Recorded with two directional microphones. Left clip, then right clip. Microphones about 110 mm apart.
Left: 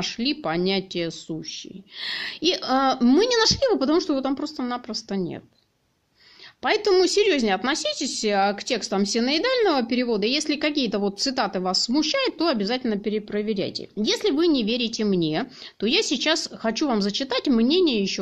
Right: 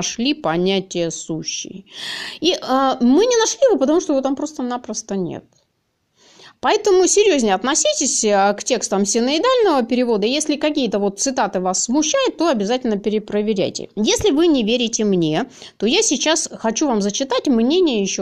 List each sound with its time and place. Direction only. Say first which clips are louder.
0.0 s a woman's voice: right 6 dB; 40° right (ahead or behind)
1.3 s a woman's voice: right 7 dB; 50° right (ahead or behind); by 5.4 s 30° right (ahead or behind)
6.6 s a woman's voice: right 5 dB; 35° right (ahead or behind)
12.9 s a woman's voice: right 6 dB; 45° right (ahead or behind); by 17.7 s 25° right (ahead or behind)